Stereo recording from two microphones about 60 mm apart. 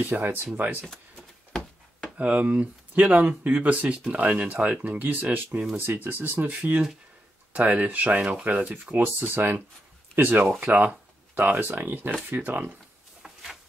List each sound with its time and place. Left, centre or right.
0.0 s speech: right
2.1 s speech: right
13.2 s a sound: centre